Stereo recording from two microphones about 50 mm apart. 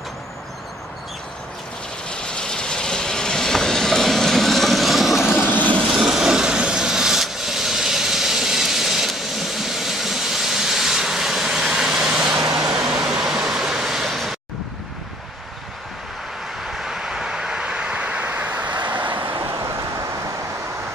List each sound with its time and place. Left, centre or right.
2.0 s train: centre
5.4 s vehicle: left
5.9 s vehicle: centre
14.0 s vehicle: centre
16.6 s vehicle: centre; by 18.2 s right
18.2 s vehicle: right